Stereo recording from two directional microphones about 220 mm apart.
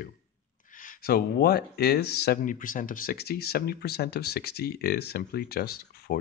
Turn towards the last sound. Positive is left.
turn(degrees=45)  # may be behind; listen again after turning